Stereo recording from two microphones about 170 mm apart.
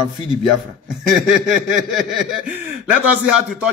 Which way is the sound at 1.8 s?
5° right (ahead or behind).